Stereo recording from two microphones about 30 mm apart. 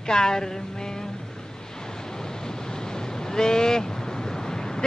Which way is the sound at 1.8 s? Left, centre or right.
Left.